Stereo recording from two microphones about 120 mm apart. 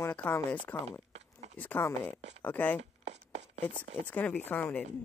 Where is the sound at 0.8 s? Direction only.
65° right (ahead or behind).